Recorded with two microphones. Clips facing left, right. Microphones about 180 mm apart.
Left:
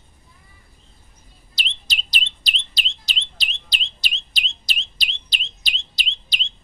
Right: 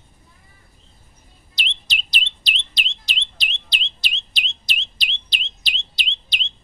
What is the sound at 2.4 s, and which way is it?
Bird, 35° left (ahead or behind).